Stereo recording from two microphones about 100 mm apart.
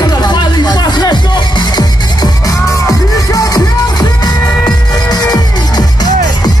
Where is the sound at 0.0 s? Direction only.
45° left (ahead or behind).